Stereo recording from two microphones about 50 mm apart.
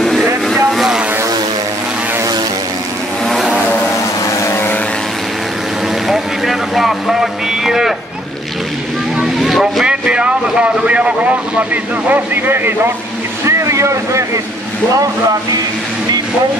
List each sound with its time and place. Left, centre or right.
0.7 s vehicle: centre
6.0 s vehicle: centre
9.2 s vehicle: centre
9.8 s vehicle: centre; by 12.7 s right
13.5 s a sound: right